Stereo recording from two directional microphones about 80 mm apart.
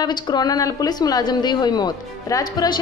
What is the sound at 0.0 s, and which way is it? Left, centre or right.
A woman's voice, left.